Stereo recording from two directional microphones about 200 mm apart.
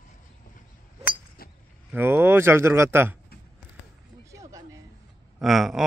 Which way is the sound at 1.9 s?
10° right (ahead or behind).